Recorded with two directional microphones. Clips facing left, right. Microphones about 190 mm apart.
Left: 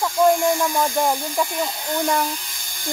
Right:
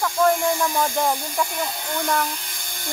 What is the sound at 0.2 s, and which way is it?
Hiss, 20° left (ahead or behind).